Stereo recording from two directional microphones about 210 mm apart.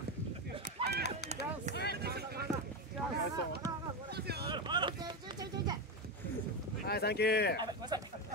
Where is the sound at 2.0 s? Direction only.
50° right (ahead or behind).